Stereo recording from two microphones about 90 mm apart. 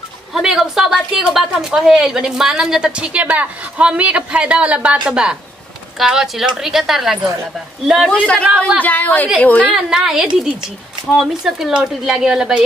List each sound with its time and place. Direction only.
0.3 s a woman's voice: 5° right (ahead or behind)
8.1 s a woman's voice: 10° left (ahead or behind)
9.8 s a woman's voice: 5° right (ahead or behind)